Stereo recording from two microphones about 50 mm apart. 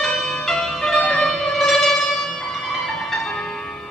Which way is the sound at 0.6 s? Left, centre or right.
Centre.